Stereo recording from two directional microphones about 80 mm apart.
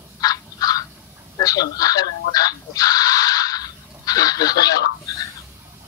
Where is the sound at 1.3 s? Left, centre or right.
Left.